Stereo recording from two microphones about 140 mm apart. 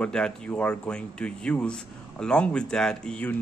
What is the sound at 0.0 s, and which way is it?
Speech, 5° left (ahead or behind).